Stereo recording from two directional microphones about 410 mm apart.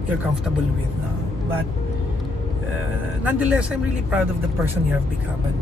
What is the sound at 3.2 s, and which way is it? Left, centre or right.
Speech, centre.